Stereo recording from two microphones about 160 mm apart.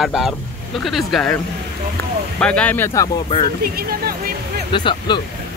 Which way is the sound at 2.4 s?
10° left (ahead or behind).